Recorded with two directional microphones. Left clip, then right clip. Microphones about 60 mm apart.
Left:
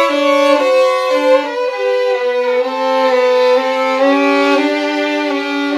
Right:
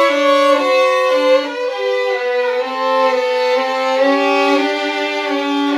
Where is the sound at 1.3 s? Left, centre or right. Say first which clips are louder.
Left 2 dB; centre.